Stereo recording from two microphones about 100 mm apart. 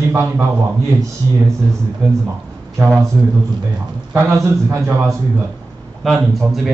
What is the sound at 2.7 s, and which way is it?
Speech, 20° right (ahead or behind).